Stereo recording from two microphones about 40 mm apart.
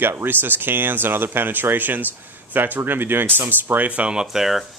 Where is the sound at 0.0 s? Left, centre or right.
Right.